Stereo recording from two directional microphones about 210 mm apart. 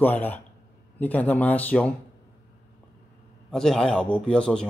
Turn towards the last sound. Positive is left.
turn(degrees=5)  # may be behind; listen again after turning